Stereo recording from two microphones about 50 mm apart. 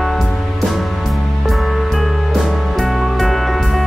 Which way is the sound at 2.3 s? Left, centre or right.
Centre.